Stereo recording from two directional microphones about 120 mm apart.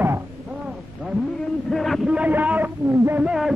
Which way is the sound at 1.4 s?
5° left (ahead or behind).